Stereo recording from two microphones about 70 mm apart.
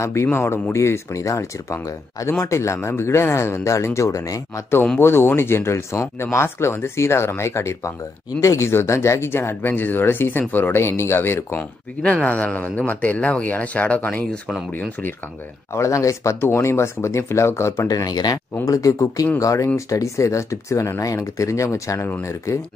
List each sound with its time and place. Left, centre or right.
0.0 s speech: left
4.9 s speech: left
12.0 s speech: centre
15.7 s speech: left
16.3 s speech: left
17.8 s speech: left